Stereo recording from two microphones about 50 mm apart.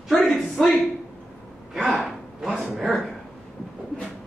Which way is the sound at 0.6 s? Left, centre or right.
Centre.